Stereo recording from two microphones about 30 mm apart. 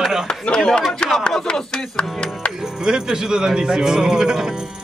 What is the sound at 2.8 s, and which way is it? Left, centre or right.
A man's voice, right.